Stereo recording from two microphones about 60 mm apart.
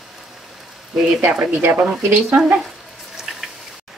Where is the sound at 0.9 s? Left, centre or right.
Centre.